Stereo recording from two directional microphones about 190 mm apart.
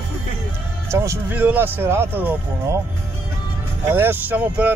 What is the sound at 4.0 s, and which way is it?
Speech, 10° right (ahead or behind).